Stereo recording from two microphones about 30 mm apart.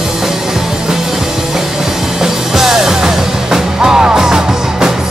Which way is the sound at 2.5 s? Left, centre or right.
Centre.